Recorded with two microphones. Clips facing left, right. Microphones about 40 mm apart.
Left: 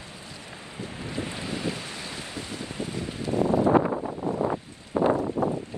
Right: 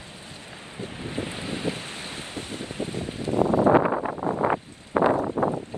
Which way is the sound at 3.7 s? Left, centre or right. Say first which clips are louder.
Right 3 dB; right.